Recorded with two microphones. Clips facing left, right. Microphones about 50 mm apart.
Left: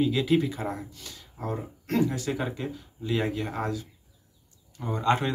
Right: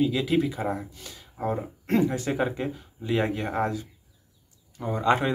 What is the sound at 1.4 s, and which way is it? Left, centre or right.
Speech, right.